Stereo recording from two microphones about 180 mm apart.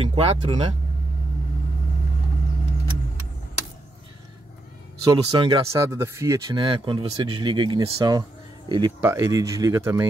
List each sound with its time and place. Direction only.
0.0 s speech: 30° right (ahead or behind)
5.1 s speech: 25° right (ahead or behind)
5.7 s speech: 15° right (ahead or behind)